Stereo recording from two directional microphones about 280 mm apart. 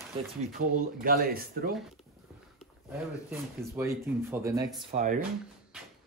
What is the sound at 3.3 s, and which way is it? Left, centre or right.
Speech, centre.